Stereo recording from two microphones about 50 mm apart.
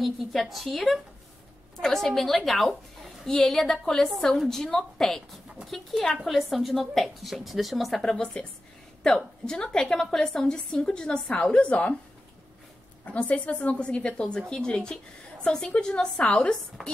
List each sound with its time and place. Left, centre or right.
0.0 s a woman's voice: centre
8.0 s a woman's voice: centre
13.0 s a woman's voice: left
16.8 s speech: centre